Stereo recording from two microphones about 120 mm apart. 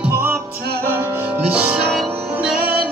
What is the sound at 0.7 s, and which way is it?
Music, 20° right (ahead or behind).